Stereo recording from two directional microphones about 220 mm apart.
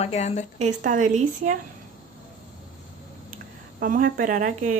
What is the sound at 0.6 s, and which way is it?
Speech, 35° right (ahead or behind).